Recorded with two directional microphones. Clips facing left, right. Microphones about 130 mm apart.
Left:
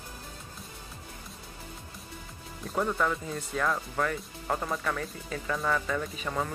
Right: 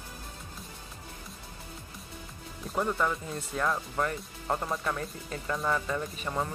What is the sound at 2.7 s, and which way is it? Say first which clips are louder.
Speech: left 1 dB; 5° right (ahead or behind).